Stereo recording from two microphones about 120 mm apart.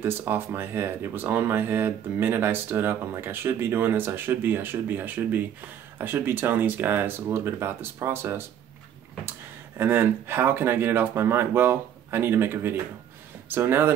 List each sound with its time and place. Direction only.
0.0 s speech: 20° right (ahead or behind)
9.8 s speech: 20° right (ahead or behind)